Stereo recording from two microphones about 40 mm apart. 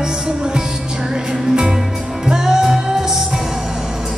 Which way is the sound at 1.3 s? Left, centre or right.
Centre.